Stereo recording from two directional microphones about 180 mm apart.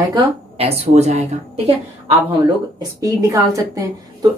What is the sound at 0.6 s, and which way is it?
A woman's voice, 35° right (ahead or behind).